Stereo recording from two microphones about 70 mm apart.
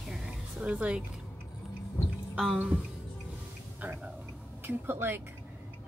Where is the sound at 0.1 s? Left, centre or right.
Centre.